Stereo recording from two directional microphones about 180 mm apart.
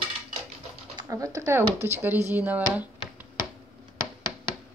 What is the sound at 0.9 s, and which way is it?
Speech, 20° right (ahead or behind).